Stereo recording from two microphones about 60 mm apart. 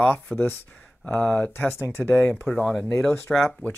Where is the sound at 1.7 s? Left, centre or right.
Left.